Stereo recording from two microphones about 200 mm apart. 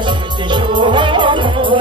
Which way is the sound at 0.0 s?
25° right (ahead or behind).